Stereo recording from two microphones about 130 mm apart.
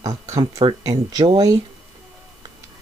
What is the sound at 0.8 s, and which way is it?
Speech, 30° right (ahead or behind).